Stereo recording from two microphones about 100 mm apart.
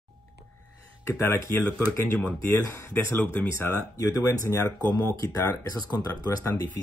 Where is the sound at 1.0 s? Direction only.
25° left (ahead or behind).